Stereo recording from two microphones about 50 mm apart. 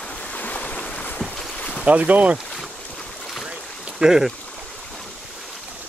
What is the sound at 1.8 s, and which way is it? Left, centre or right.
Speech, right.